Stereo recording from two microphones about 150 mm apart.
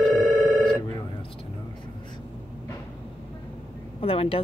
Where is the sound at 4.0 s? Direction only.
40° left (ahead or behind).